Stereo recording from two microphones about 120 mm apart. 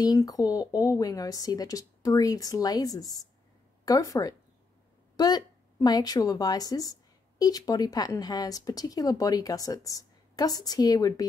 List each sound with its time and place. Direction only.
0.0 s speech: 30° left (ahead or behind)